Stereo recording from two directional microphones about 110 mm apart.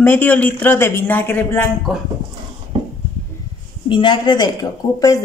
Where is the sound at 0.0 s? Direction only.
15° left (ahead or behind).